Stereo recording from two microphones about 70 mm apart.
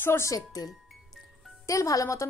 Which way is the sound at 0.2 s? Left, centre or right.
Left.